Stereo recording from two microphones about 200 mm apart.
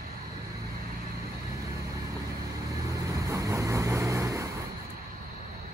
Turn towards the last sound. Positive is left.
turn(degrees=-15)  # may be behind; listen again after turning